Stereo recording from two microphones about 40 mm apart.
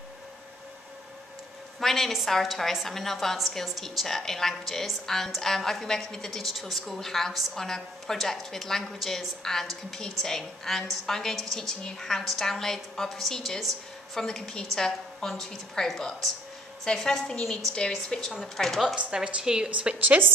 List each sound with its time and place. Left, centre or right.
1.8 s a woman's voice: centre
6.4 s a woman's voice: centre
18.6 s a woman's voice: centre
19.1 s a woman's voice: centre
19.8 s a woman's voice: right